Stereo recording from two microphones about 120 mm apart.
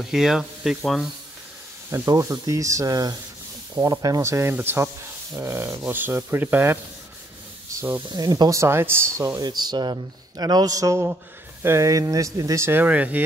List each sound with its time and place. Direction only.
0.0 s speech: 5° right (ahead or behind)
1.9 s speech: 25° right (ahead or behind)
7.7 s a sound: 20° right (ahead or behind)
8.1 s speech: 35° right (ahead or behind); by 13.2 s 15° right (ahead or behind)